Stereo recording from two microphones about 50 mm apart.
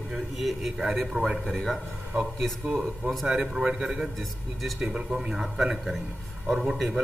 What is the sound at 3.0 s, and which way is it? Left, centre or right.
Speech, right.